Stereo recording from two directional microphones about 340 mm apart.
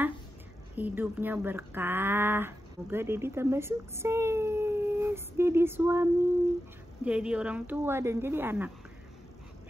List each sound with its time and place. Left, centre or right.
0.7 s speech: centre
7.1 s speech: centre